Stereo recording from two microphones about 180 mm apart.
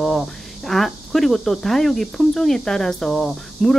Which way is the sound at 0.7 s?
Centre (ahead or behind).